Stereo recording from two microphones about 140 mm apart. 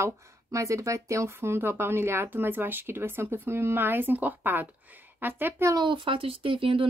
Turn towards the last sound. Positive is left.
turn(degrees=-40)  # may be behind; listen again after turning